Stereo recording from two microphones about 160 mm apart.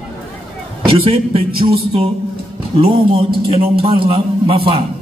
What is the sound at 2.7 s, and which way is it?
A man's voice, 35° right (ahead or behind).